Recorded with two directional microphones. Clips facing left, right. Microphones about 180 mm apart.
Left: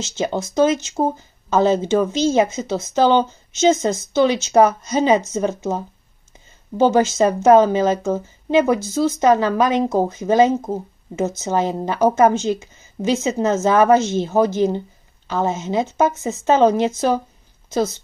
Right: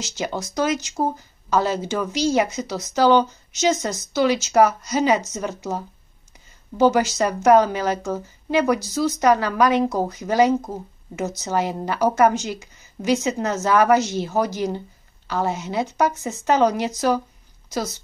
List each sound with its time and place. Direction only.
0.0 s a woman's voice: 25° left (ahead or behind)